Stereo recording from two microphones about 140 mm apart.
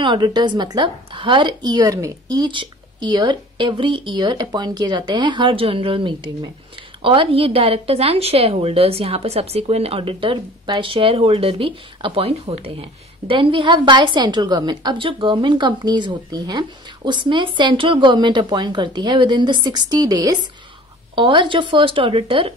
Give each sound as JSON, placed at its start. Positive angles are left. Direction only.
{"t": 0.0, "sound": "a woman's voice", "side_deg": -35}